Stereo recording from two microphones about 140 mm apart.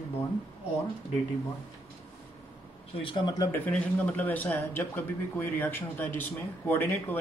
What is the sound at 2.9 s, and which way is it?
Speech, 40° left (ahead or behind).